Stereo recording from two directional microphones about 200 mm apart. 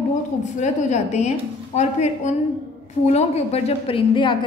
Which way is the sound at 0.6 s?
35° left (ahead or behind).